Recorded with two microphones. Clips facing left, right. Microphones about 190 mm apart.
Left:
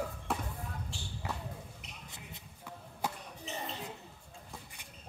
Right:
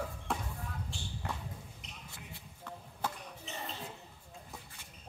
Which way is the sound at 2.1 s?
20° left (ahead or behind).